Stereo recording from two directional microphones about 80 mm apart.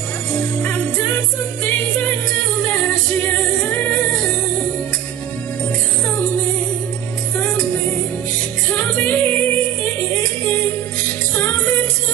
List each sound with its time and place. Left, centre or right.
0.3 s music: centre
3.7 s music: left
8.7 s music: left
11.3 s music: centre